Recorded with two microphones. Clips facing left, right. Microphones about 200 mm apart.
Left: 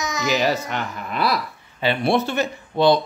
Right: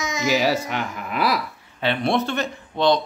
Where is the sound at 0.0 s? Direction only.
25° right (ahead or behind).